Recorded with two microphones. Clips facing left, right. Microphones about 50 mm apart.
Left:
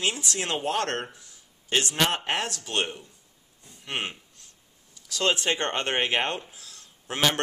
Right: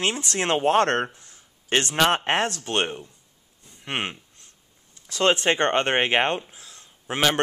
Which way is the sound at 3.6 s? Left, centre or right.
Right.